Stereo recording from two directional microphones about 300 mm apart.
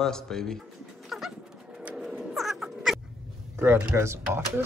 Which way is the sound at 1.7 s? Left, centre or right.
Centre.